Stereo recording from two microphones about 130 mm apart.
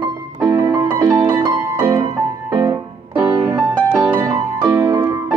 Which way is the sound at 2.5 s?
30° right (ahead or behind).